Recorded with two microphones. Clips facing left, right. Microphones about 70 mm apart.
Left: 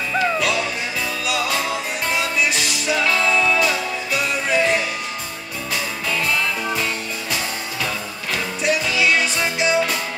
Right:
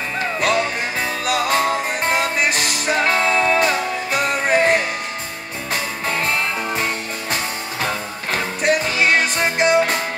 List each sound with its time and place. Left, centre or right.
0.4 s music: right